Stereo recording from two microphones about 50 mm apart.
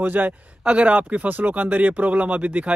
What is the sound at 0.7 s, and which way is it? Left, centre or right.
Speech, right.